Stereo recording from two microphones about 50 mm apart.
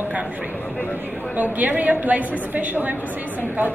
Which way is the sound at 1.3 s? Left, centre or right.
Right.